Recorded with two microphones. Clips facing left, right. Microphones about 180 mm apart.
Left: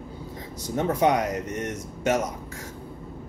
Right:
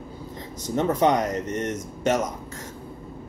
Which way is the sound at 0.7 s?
10° left (ahead or behind).